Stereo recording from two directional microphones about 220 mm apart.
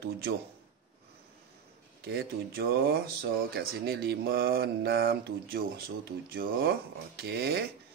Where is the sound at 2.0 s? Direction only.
45° right (ahead or behind).